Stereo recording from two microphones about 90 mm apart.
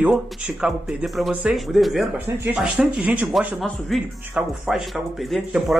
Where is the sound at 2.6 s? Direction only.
10° right (ahead or behind).